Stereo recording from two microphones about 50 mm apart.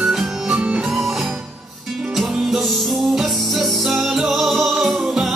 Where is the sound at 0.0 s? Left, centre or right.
Centre.